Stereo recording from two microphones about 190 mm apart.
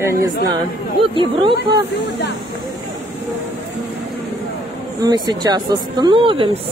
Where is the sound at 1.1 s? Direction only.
25° right (ahead or behind).